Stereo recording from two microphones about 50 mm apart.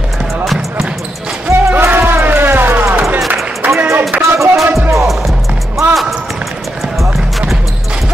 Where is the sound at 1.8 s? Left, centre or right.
Right.